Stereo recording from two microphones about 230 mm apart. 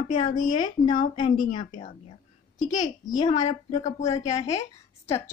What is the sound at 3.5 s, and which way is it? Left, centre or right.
Speech, left.